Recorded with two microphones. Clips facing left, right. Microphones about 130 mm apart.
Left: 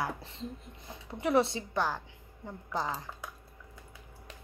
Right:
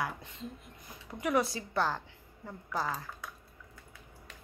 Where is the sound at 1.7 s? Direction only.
15° left (ahead or behind).